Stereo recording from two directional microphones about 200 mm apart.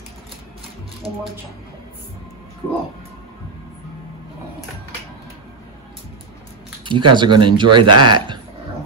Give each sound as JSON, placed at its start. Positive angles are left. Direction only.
{"t": 6.8, "sound": "speech", "side_deg": -25}